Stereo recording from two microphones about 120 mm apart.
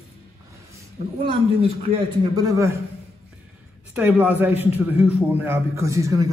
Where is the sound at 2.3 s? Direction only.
25° right (ahead or behind).